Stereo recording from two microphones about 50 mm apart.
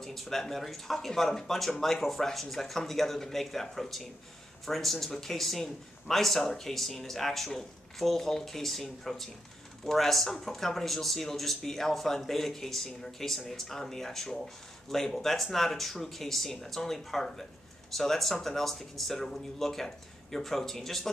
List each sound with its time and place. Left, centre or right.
0.0 s a man's voice: centre